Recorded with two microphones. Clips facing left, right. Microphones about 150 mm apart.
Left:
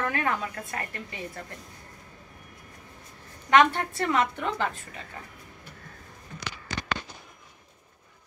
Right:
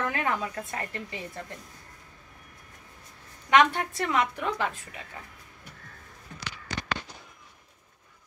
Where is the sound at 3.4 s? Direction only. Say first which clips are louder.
Left 1 dB; 10° right (ahead or behind).